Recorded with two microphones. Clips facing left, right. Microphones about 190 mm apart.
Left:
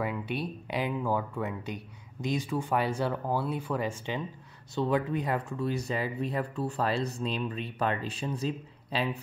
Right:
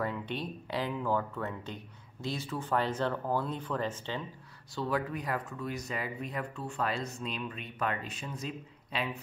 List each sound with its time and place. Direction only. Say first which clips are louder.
0.0 s speech: left 3 dB; 10° left (ahead or behind)
4.7 s speech: left 5 dB; 25° left (ahead or behind)